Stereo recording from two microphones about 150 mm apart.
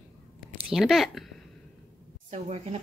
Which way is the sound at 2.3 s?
45° right (ahead or behind).